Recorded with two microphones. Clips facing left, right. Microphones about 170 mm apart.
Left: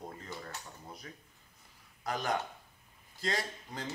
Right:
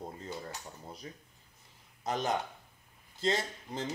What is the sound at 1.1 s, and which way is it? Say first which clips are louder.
Speech: right 3 dB; 25° right (ahead or behind).